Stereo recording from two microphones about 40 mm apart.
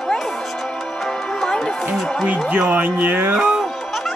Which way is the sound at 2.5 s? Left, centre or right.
Right.